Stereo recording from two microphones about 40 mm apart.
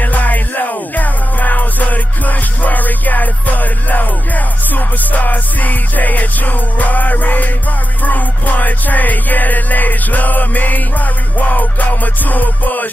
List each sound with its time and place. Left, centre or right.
0.0 s music: left